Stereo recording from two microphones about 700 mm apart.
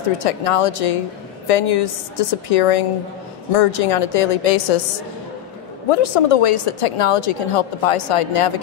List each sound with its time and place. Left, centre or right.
0.2 s a woman's voice: left
5.9 s a woman's voice: left